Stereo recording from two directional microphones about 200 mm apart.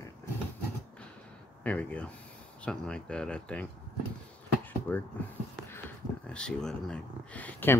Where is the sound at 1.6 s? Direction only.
5° left (ahead or behind).